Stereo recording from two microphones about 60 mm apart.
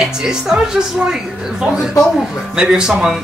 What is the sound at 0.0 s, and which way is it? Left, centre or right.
A woman's voice, centre.